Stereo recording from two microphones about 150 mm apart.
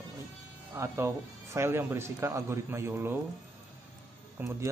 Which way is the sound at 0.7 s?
15° right (ahead or behind).